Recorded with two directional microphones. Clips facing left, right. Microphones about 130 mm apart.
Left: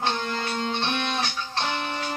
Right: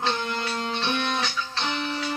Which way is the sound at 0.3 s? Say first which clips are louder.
Left 1 dB; 45° left (ahead or behind).